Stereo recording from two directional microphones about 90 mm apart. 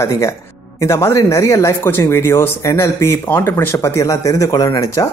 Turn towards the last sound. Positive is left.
turn(degrees=35)  # may be behind; listen again after turning